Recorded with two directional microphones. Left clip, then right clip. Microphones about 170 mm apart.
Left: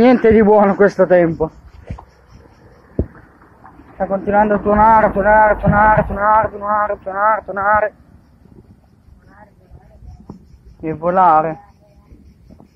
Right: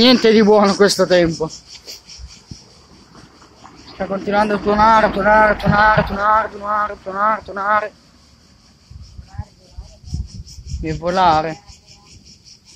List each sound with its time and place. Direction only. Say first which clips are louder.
0.0 s speech: left 1 dB; 35° right (ahead or behind)
3.1 s a sound: even; 10° right (ahead or behind)
4.3 s speech: left 2 dB; 40° right (ahead or behind)
10.8 s speech: left 3 dB; 35° right (ahead or behind)